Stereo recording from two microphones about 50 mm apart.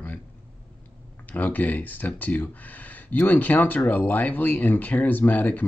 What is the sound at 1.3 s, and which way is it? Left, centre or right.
Speech, left.